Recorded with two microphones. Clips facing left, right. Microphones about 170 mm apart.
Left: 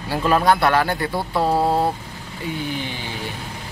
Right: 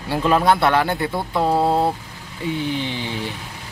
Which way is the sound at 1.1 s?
5° left (ahead or behind).